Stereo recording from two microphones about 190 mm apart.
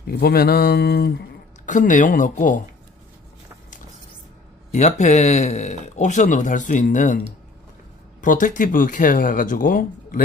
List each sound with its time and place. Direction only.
0.0 s speech: 55° left (ahead or behind)
1.7 s speech: 40° left (ahead or behind)
4.6 s speech: 35° left (ahead or behind)
8.2 s speech: 45° left (ahead or behind)